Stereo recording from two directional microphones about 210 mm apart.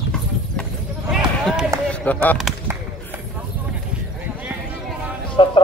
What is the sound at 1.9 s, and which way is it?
Speech, 5° left (ahead or behind).